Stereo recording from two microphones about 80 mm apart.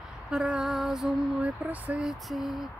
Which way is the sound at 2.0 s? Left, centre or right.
Centre.